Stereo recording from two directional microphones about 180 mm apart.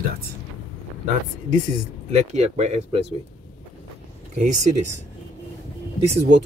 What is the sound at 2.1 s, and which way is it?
Speech, 40° right (ahead or behind).